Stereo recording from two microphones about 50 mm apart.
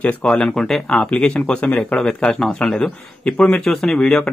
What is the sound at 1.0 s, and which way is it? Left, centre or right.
Speech, left.